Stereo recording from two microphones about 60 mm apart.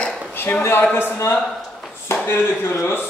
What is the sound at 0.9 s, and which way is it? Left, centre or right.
Speech, left.